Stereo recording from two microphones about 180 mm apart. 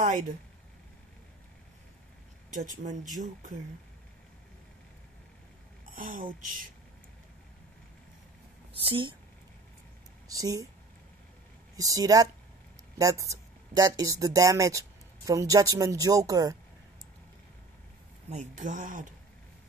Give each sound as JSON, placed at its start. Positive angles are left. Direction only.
{"t": 2.5, "sound": "speech", "side_deg": -45}
{"t": 5.9, "sound": "speech", "side_deg": -50}
{"t": 8.7, "sound": "speech", "side_deg": -30}
{"t": 10.2, "sound": "speech", "side_deg": -20}
{"t": 11.7, "sound": "speech", "side_deg": -20}
{"t": 18.3, "sound": "speech", "side_deg": -40}